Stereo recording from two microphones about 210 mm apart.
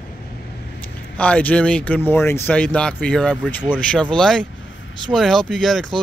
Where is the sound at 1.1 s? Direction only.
5° left (ahead or behind).